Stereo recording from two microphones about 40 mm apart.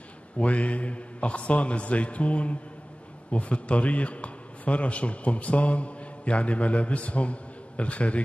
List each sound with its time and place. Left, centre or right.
0.4 s a man's voice: left